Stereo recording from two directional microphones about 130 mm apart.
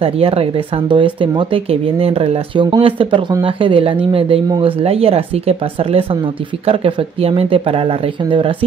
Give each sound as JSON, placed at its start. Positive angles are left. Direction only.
{"t": 0.0, "sound": "speech", "side_deg": -45}